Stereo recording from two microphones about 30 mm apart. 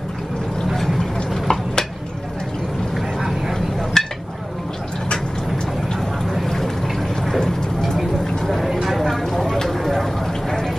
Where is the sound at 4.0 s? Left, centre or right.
Centre.